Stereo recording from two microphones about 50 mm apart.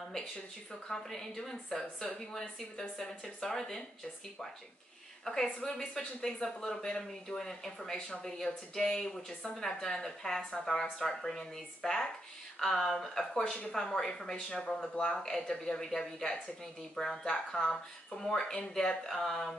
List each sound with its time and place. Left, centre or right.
0.8 s speech: centre
5.2 s speech: centre